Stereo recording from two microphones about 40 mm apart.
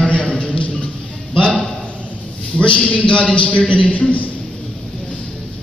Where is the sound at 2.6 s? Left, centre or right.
Left.